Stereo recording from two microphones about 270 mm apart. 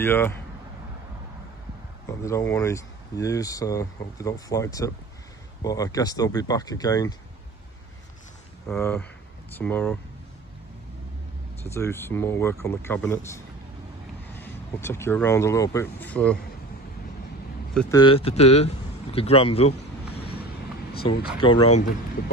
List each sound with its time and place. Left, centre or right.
0.0 s speech: centre
2.0 s speech: centre
8.6 s speech: centre
11.7 s speech: centre
17.9 s speech: centre
20.9 s speech: left
21.4 s speech: centre